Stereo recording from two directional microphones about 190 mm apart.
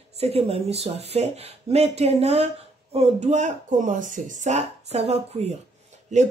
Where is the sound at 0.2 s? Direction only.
30° right (ahead or behind).